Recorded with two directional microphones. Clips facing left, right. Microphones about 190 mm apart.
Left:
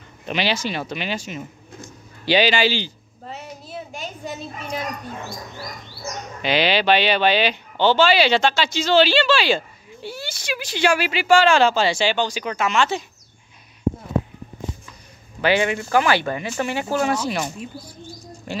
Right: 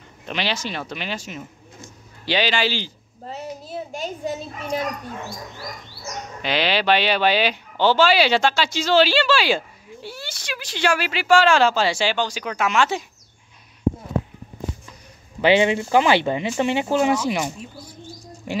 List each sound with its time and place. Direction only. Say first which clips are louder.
0.3 s speech: left 3 dB; 5° left (ahead or behind)
3.3 s a sound: right 3 dB; 40° right (ahead or behind)
6.4 s speech: left 2 dB; centre (ahead or behind)
15.4 s speech: right 3 dB; 25° right (ahead or behind)